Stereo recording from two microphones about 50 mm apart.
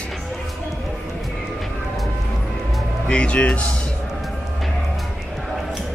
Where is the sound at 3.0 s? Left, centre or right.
Left.